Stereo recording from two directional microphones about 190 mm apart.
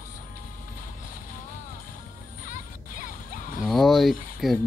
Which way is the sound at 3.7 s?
Centre (ahead or behind).